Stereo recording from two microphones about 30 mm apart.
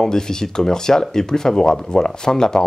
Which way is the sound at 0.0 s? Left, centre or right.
Centre.